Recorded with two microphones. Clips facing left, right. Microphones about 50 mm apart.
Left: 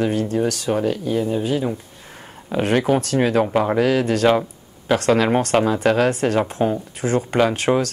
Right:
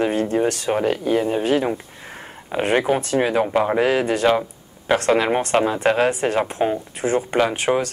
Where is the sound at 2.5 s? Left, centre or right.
Centre.